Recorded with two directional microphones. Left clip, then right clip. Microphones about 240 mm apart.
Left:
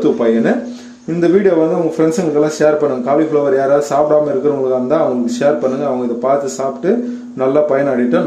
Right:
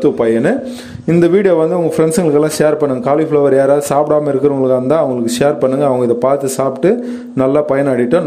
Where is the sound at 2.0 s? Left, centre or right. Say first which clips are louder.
Right 2 dB; right.